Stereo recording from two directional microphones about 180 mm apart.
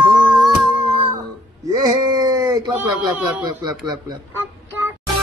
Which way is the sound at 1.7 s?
20° right (ahead or behind).